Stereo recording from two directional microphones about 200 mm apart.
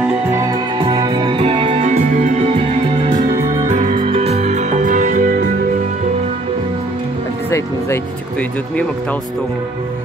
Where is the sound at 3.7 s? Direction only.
35° right (ahead or behind).